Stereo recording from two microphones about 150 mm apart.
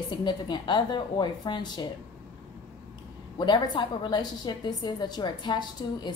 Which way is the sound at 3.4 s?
30° left (ahead or behind).